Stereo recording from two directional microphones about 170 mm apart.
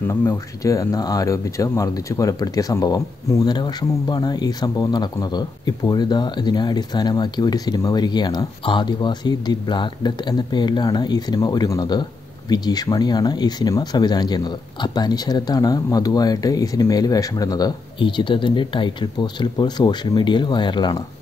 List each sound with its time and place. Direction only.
0.1 s speech: 15° left (ahead or behind)